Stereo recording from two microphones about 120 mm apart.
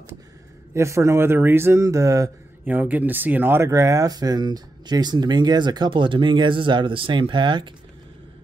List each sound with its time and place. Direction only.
0.7 s speech: 25° right (ahead or behind)
2.6 s speech: 15° right (ahead or behind); by 7.7 s 40° right (ahead or behind)